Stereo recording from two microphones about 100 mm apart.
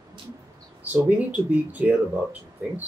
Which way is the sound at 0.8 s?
15° right (ahead or behind).